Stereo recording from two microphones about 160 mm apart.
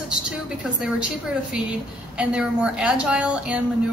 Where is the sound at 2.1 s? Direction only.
5° right (ahead or behind).